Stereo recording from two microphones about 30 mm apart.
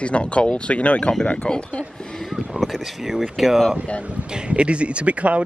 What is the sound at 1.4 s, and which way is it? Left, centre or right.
Speech, left.